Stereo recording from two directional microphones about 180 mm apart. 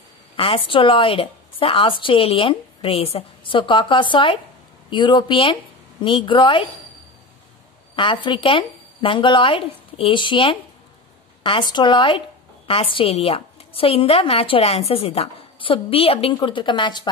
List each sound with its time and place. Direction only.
0.4 s a woman's voice: 30° left (ahead or behind)
7.9 s a woman's voice: 30° left (ahead or behind)